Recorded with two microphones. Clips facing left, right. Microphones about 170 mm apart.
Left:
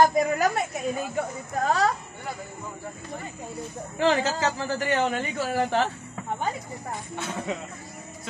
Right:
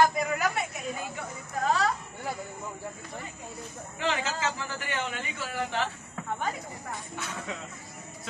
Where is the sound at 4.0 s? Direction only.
40° left (ahead or behind).